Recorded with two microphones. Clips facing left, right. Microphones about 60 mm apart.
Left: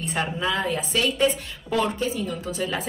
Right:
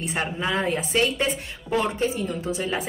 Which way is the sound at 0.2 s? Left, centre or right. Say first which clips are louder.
Even; right.